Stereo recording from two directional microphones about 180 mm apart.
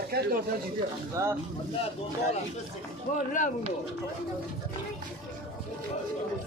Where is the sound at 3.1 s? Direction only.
50° left (ahead or behind).